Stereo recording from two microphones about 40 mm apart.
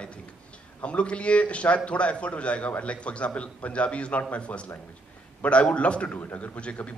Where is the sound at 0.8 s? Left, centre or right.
Left.